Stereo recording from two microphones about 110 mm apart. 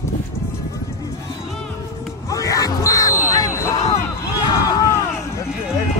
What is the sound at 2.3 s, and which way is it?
Yell, 30° left (ahead or behind).